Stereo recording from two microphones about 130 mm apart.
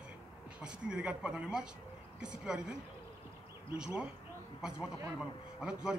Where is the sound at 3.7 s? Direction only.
5° right (ahead or behind).